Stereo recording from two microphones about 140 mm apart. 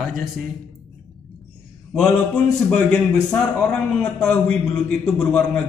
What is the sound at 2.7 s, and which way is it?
A man's voice, 5° left (ahead or behind).